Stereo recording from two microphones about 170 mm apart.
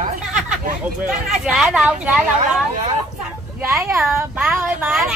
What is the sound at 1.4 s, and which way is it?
Speech, 5° right (ahead or behind).